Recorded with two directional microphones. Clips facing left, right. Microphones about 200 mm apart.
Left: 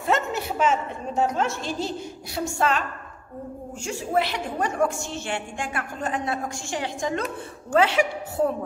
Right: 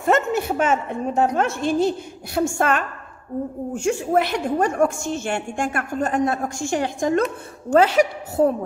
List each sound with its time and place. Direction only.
0.0 s a woman's voice: 50° right (ahead or behind)